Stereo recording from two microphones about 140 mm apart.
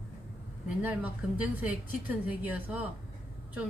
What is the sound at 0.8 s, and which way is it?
A woman's voice, 10° right (ahead or behind).